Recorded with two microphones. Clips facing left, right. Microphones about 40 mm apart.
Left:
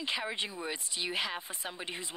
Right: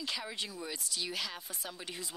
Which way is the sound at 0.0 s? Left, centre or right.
Left.